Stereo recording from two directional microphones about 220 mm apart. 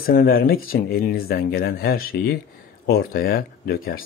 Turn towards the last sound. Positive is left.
turn(degrees=45)  # may be behind; listen again after turning